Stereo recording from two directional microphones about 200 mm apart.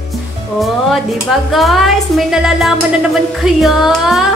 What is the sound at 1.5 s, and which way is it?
Speech, centre (ahead or behind).